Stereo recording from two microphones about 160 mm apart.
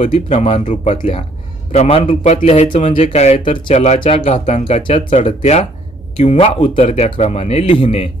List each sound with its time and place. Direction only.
0.0 s a man's voice: 40° left (ahead or behind)
2.0 s speech: 50° left (ahead or behind)
4.8 s a man's voice: 35° left (ahead or behind)